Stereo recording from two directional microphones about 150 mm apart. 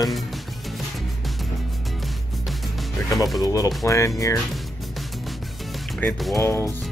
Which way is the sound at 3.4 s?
25° left (ahead or behind).